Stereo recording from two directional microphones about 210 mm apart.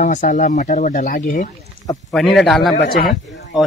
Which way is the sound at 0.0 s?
35° left (ahead or behind).